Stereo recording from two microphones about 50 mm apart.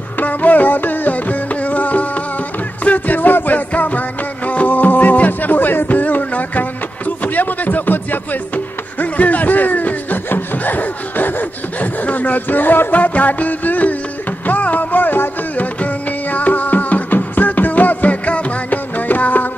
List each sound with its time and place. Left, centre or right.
0.2 s music: left
7.2 s chopping: left
9.0 s snicker: left
14.4 s music: left